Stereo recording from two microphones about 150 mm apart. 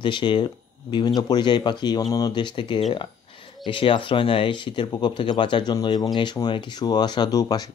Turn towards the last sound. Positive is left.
turn(degrees=25)  # may be behind; listen again after turning